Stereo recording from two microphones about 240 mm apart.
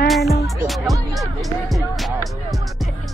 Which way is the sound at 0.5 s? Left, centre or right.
Centre.